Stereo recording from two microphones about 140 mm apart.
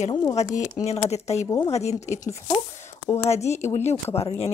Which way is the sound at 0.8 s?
50° left (ahead or behind).